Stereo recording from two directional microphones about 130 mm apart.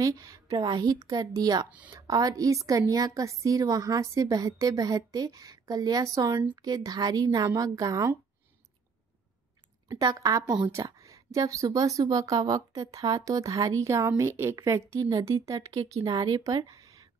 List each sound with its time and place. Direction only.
0.2 s a woman's voice: 25° right (ahead or behind)
9.8 s a woman's voice: 30° right (ahead or behind)
10.7 s a sound: 25° right (ahead or behind)
11.3 s a woman's voice: 25° right (ahead or behind)